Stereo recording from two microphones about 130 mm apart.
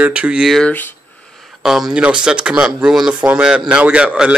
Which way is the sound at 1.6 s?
5° right (ahead or behind).